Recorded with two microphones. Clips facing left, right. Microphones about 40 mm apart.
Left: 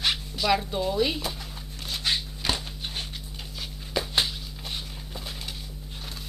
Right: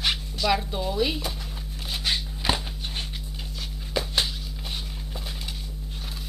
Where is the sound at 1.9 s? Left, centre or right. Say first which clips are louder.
Even; centre.